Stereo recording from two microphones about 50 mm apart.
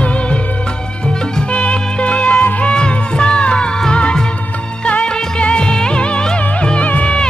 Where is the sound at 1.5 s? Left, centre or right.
Left.